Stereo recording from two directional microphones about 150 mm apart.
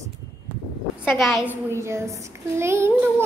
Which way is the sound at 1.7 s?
20° right (ahead or behind).